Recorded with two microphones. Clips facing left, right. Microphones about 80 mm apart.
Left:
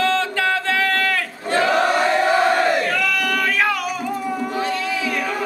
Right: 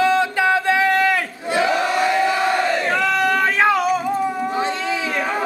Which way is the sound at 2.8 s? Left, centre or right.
Right.